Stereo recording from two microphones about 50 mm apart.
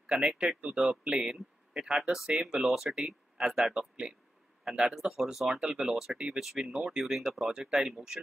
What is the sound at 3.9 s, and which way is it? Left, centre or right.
Speech, right.